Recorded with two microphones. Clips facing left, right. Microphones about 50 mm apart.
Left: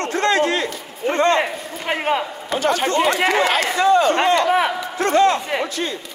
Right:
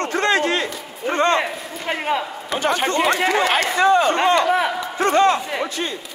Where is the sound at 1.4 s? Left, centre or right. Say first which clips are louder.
Left 1 dB; centre.